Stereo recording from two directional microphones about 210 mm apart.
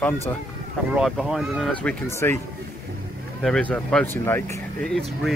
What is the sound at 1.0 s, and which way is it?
Speech, centre (ahead or behind).